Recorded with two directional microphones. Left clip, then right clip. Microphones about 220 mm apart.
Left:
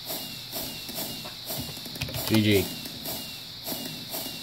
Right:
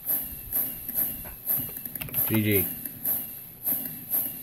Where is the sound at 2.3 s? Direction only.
5° left (ahead or behind).